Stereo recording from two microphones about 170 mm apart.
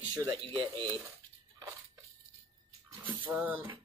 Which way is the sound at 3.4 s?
10° right (ahead or behind).